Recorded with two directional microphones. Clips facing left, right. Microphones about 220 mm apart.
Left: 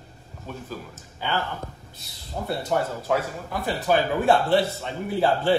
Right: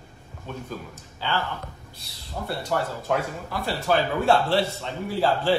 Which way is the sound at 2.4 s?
15° left (ahead or behind).